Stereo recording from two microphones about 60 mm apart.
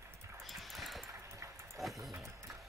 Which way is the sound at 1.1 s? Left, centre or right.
Right.